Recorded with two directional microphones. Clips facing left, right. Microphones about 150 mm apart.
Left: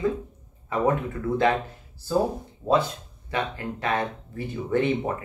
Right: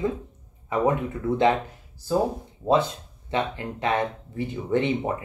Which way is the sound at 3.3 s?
20° right (ahead or behind).